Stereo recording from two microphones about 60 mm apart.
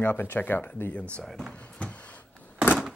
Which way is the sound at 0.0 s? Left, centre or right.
Left.